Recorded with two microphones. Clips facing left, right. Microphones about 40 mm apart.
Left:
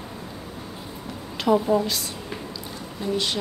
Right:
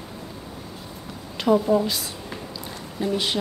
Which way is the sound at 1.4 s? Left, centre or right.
Centre.